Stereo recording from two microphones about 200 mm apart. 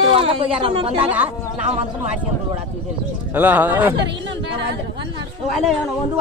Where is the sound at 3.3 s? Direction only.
10° right (ahead or behind).